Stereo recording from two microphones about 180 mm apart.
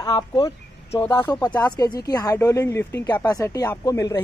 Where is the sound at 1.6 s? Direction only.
20° left (ahead or behind).